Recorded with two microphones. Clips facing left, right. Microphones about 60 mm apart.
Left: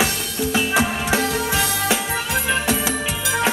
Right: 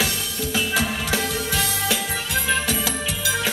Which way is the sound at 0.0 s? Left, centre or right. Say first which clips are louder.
Left 4 dB; left.